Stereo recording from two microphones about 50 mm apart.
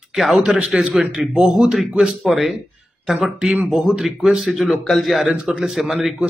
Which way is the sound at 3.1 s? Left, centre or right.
Centre.